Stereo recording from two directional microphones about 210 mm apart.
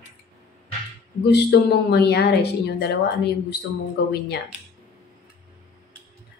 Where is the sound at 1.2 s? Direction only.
50° left (ahead or behind).